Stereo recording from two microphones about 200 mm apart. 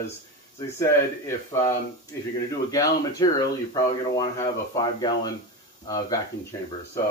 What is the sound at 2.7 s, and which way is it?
Speech, 20° left (ahead or behind).